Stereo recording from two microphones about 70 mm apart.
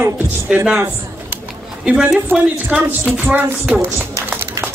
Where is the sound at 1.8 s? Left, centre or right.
Centre.